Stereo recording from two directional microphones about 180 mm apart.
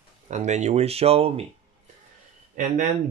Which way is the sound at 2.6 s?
45° right (ahead or behind).